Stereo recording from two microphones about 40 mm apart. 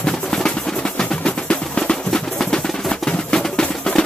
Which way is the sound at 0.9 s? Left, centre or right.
Left.